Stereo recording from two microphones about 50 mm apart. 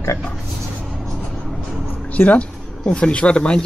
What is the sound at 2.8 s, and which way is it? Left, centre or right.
Speech, centre.